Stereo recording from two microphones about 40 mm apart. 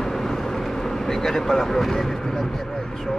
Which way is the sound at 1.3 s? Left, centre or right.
Centre.